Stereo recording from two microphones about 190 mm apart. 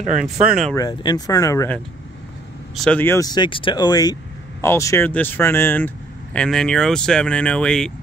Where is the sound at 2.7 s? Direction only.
5° left (ahead or behind).